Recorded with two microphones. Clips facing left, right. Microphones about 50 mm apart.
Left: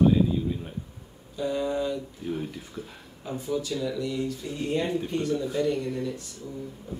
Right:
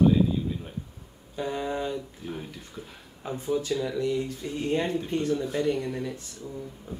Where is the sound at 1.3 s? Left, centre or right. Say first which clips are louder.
Left 2 dB; right.